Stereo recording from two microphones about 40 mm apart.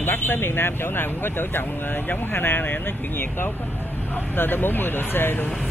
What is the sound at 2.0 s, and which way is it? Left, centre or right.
Speech, left.